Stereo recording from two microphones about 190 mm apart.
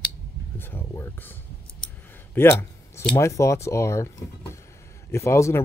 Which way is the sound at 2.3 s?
10° left (ahead or behind).